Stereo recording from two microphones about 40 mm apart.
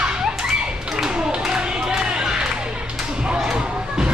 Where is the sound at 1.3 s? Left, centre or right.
Centre.